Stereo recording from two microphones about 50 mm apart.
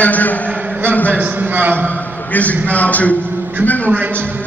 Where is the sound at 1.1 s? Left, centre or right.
Right.